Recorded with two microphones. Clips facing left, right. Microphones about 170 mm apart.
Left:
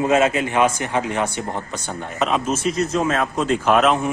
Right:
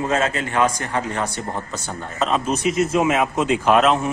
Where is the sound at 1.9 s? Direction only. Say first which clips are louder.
Even; 5° left (ahead or behind).